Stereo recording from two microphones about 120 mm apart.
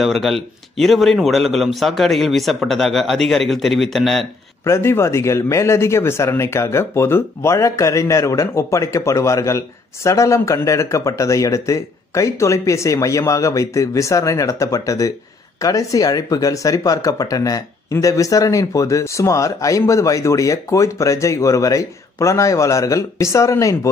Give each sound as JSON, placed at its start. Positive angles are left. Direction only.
{"t": 0.0, "sound": "a man's voice", "side_deg": 0}
{"t": 4.6, "sound": "speech", "side_deg": 20}